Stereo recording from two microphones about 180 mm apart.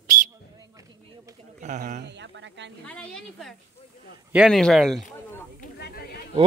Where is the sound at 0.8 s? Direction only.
20° right (ahead or behind).